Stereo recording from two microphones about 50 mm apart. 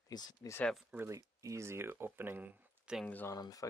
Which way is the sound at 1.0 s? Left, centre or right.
Right.